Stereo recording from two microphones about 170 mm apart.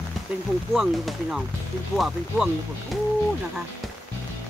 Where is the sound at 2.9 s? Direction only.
Centre (ahead or behind).